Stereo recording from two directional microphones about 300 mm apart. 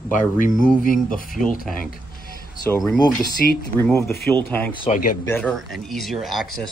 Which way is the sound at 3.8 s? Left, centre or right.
Centre.